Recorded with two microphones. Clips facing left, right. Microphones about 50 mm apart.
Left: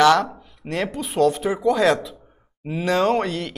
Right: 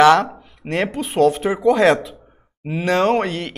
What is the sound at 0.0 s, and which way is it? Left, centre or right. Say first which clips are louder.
A man's voice: right 3 dB; right.